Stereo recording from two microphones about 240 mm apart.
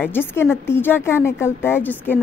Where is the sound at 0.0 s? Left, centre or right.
Centre.